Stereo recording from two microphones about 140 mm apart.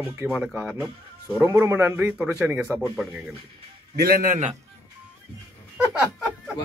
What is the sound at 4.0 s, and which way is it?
Speech, 90° right.